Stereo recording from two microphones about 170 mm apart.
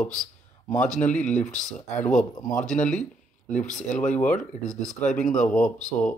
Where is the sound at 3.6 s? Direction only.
45° left (ahead or behind).